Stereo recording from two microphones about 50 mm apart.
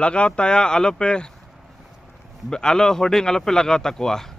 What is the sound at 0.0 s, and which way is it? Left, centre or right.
Speech, left.